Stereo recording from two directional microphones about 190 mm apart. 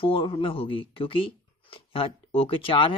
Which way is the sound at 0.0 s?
30° left (ahead or behind).